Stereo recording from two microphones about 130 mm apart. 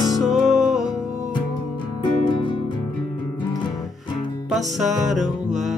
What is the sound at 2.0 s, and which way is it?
Music, 35° left (ahead or behind).